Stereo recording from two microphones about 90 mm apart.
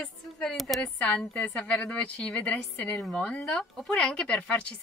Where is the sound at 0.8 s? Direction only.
20° left (ahead or behind).